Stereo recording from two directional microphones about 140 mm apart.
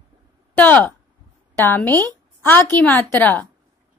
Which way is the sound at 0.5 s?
10° left (ahead or behind).